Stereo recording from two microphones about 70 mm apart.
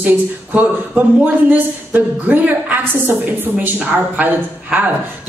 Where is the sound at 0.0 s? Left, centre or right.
Right.